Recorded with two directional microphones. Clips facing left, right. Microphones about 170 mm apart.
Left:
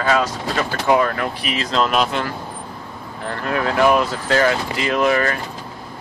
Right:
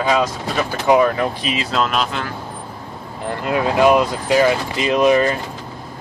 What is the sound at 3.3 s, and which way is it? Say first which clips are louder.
Speech: right 2 dB; 15° right (ahead or behind).